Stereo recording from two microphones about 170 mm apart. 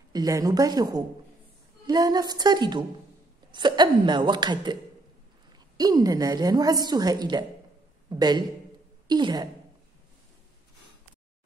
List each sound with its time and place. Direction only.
0.1 s a woman's voice: 20° right (ahead or behind)
5.8 s a woman's voice: 20° right (ahead or behind)